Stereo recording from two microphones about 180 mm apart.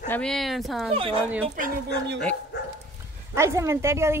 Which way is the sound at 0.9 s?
30° right (ahead or behind).